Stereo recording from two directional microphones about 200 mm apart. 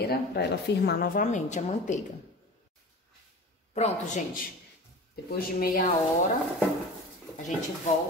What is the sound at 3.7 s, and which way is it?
Speech, 35° left (ahead or behind).